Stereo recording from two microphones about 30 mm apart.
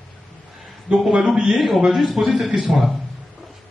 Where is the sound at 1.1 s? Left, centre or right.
Centre.